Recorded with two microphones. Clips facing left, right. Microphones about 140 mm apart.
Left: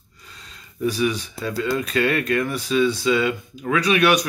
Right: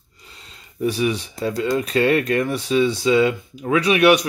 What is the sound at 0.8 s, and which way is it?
Speech, 30° right (ahead or behind).